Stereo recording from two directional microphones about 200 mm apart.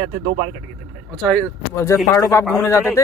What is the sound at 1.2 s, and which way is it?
Speech, 5° left (ahead or behind).